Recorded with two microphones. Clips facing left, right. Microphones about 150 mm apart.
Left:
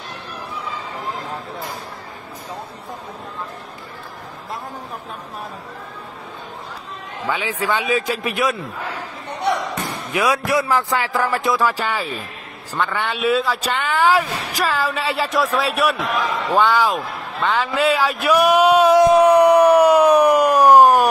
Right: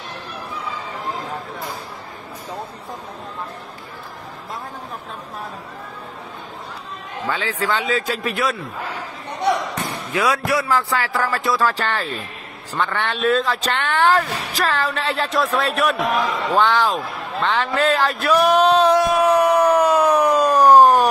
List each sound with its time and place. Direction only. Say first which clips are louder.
7.2 s speech: left 1 dB; 15° left (ahead or behind)
10.1 s a man's voice: left 1 dB; 15° left (ahead or behind)